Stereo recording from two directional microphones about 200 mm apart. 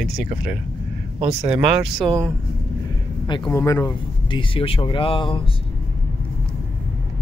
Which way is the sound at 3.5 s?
15° left (ahead or behind).